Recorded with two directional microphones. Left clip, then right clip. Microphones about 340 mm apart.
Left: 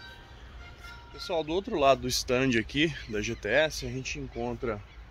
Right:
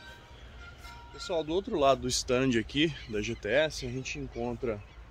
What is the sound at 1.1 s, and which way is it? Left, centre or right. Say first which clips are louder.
Speech: left 1 dB; centre.